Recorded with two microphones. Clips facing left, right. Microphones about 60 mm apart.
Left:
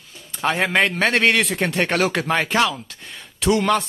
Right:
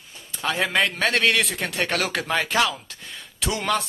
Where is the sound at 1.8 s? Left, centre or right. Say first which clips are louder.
Left 4 dB; left.